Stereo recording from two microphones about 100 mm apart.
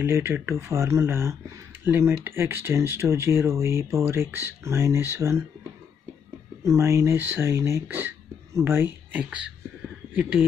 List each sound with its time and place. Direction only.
0.0 s speech: 25° right (ahead or behind)
6.6 s speech: 30° right (ahead or behind); by 9.5 s 15° right (ahead or behind)